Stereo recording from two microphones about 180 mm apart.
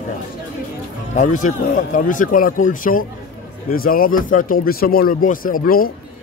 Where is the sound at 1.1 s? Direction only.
45° left (ahead or behind).